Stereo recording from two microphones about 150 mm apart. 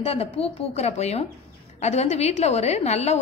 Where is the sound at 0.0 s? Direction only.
40° left (ahead or behind).